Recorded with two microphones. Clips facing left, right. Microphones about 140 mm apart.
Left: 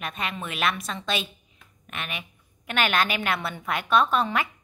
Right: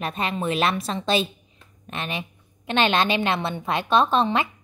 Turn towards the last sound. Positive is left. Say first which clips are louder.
# right 3 dB
turn(degrees=-25)  # may be behind; listen again after turning